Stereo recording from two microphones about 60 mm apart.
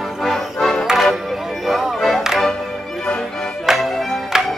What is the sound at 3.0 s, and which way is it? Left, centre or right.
Music, centre.